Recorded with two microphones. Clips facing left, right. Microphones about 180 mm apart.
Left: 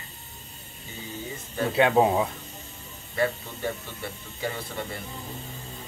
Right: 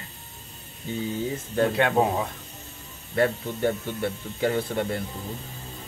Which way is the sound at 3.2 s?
60° right (ahead or behind).